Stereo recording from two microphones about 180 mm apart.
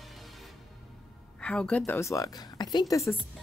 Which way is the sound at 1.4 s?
5° left (ahead or behind).